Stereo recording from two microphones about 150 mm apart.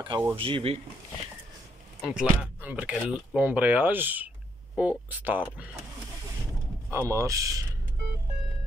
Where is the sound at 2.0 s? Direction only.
5° right (ahead or behind).